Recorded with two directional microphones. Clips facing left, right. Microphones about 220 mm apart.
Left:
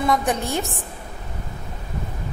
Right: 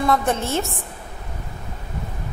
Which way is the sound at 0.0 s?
15° left (ahead or behind).